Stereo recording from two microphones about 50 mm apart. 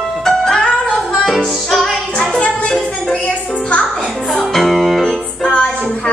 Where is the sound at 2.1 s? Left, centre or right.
Centre.